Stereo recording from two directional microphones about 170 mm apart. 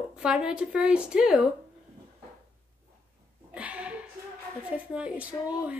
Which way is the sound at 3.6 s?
10° right (ahead or behind).